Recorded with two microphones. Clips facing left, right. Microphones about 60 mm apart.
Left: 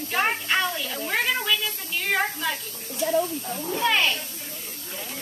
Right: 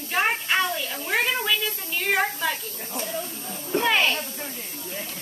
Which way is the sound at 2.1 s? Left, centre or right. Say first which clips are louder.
Right 1 dB; centre.